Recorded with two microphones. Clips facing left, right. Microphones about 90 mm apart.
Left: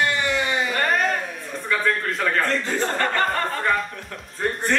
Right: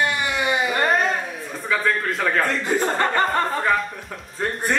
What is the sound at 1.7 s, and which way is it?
Speech, 5° right (ahead or behind).